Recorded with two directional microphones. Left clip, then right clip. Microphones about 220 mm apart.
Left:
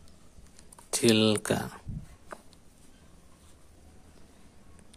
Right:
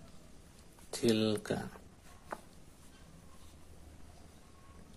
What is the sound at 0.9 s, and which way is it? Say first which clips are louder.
Speech: left 8 dB; 30° left (ahead or behind).